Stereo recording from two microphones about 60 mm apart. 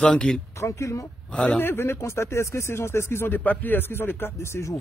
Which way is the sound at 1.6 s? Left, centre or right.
Left.